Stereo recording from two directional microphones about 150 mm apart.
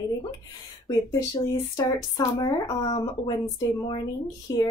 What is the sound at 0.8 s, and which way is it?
Speech, 25° left (ahead or behind).